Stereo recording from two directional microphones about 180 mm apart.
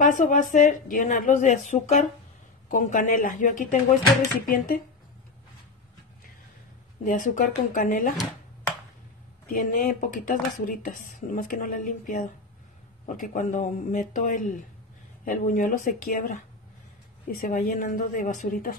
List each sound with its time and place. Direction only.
0.0 s speech: 45° left (ahead or behind)
7.0 s speech: 45° left (ahead or behind)
9.5 s speech: 50° left (ahead or behind)